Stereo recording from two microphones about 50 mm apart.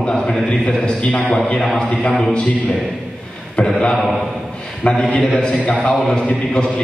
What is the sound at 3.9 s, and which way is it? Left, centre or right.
Mantra, centre.